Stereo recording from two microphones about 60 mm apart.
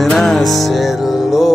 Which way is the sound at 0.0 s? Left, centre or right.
Centre.